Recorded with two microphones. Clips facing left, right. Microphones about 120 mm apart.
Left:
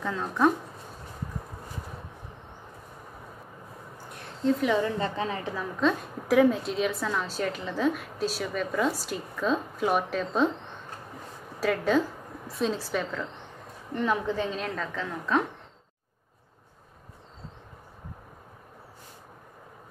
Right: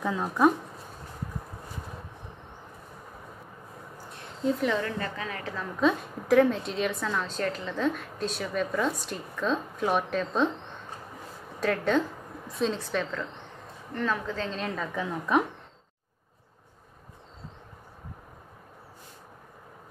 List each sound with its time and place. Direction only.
0.0 s speech: 10° right (ahead or behind)
4.8 s a woman's voice: 25° left (ahead or behind)
5.8 s a woman's voice: centre (ahead or behind)
11.6 s a woman's voice: 5° left (ahead or behind)
13.9 s a woman's voice: 15° left (ahead or behind)
14.6 s a woman's voice: centre (ahead or behind)
14.9 s a woman's voice: 15° right (ahead or behind)